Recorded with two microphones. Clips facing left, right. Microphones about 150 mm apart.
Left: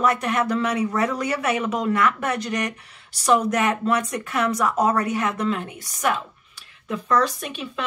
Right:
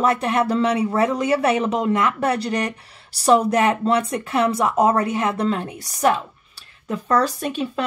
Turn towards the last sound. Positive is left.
turn(degrees=-40)  # may be behind; listen again after turning